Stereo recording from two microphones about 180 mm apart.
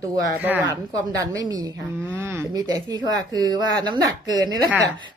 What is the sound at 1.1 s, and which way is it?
Speech, 20° right (ahead or behind).